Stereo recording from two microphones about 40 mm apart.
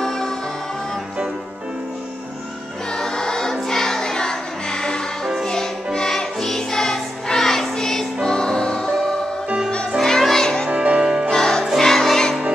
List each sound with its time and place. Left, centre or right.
0.0 s music: centre
2.9 s choir: centre
3.6 s music: centre
6.0 s music: centre
10.0 s music: centre
10.7 s music: right
11.0 s music: centre
11.2 s music: centre